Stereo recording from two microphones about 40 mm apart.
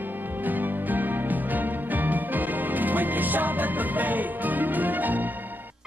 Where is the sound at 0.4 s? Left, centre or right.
Right.